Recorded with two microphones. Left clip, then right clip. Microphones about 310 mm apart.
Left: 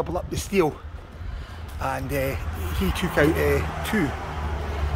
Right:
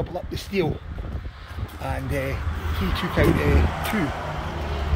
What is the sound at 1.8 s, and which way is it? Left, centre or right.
Speech, centre.